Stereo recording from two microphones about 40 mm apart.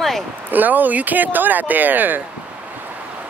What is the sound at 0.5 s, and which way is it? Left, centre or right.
Speech, right.